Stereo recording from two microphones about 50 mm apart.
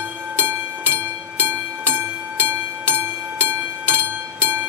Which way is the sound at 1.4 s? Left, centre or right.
Right.